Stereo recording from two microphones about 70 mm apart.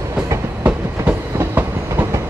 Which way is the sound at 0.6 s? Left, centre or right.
Right.